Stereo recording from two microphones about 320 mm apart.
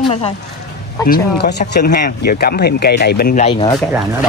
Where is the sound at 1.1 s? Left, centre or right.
Left; by 3.8 s centre.